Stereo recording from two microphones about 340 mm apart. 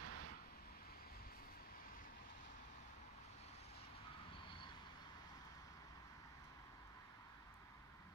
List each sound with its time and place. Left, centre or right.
0.0 s vehicle: right